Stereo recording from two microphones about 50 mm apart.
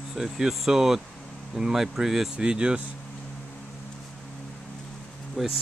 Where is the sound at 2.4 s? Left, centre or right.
Centre.